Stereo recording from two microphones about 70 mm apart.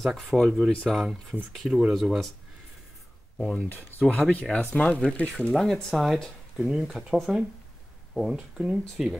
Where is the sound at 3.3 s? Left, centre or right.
Centre.